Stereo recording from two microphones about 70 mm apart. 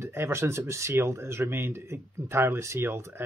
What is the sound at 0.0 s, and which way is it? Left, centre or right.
Speech, right.